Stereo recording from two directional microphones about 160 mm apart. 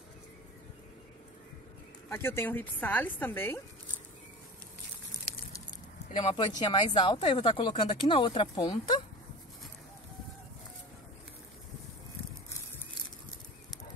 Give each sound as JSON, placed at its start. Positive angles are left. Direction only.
{"t": 2.0, "sound": "a woman's voice", "side_deg": 15}
{"t": 6.1, "sound": "speech", "side_deg": 30}